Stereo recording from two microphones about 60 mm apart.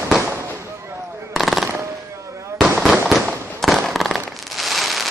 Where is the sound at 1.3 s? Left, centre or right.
Centre.